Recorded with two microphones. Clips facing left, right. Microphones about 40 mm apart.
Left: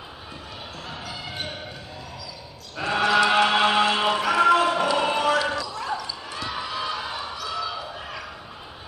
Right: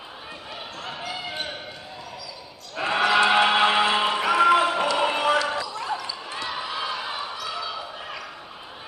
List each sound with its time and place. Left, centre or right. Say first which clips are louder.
1.1 s basketball bounce: right 1 dB; centre
2.8 s chant: even; centre
4.9 s a sound: even; centre
5.7 s basketball bounce: even; centre